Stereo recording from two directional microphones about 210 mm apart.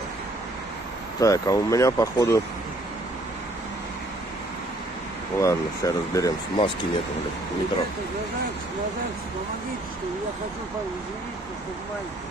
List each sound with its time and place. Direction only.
1.2 s speech: 15° left (ahead or behind)
5.4 s speech: 15° left (ahead or behind)